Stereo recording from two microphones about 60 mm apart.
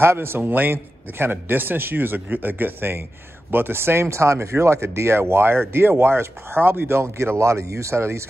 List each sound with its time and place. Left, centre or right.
0.0 s a man's voice: right